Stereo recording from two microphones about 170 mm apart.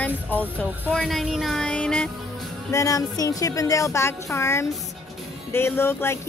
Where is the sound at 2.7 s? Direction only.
20° left (ahead or behind).